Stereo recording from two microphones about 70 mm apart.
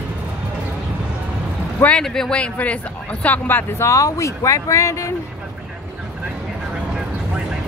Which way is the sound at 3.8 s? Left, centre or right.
Left.